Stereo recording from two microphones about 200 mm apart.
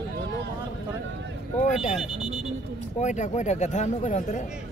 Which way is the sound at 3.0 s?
35° left (ahead or behind).